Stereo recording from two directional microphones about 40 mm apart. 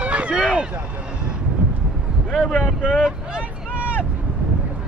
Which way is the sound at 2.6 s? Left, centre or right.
Centre.